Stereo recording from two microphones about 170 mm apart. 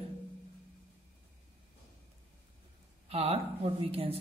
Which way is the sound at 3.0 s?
35° right (ahead or behind).